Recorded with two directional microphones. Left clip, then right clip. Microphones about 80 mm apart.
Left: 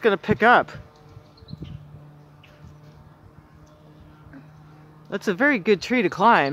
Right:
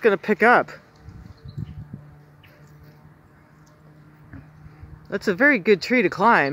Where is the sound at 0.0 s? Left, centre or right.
Right.